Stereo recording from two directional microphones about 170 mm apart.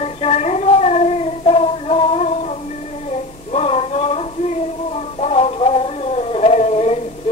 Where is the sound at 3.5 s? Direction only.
35° left (ahead or behind).